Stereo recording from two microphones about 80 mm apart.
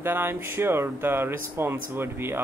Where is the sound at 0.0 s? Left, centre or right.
Right.